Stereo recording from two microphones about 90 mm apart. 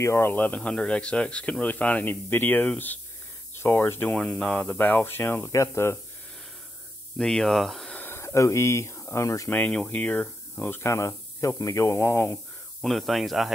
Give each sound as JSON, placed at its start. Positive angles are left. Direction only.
{"t": 0.0, "sound": "speech", "side_deg": 30}
{"t": 4.1, "sound": "speech", "side_deg": 10}
{"t": 4.6, "sound": "speech", "side_deg": 20}
{"t": 7.2, "sound": "speech", "side_deg": 5}
{"t": 7.9, "sound": "a sound", "side_deg": 20}
{"t": 8.2, "sound": "speech", "side_deg": 30}
{"t": 9.5, "sound": "speech", "side_deg": 15}
{"t": 12.8, "sound": "speech", "side_deg": 0}